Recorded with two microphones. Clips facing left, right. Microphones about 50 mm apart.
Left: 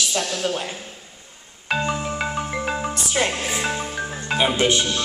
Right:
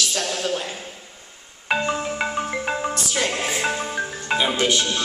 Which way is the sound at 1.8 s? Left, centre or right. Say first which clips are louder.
Left 1 dB; right.